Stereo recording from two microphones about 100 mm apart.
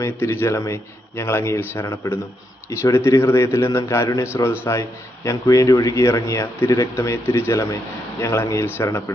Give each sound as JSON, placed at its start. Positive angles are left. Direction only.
{"t": 0.0, "sound": "a man's voice", "side_deg": 25}